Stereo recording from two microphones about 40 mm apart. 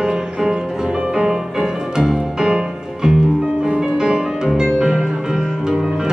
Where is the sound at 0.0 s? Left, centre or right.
Centre.